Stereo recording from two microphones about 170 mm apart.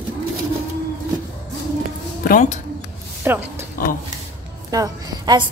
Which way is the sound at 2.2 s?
55° left (ahead or behind).